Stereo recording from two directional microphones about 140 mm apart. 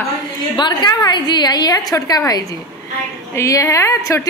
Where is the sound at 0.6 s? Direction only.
30° left (ahead or behind).